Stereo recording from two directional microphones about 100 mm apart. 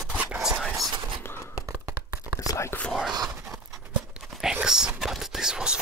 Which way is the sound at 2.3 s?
30° left (ahead or behind).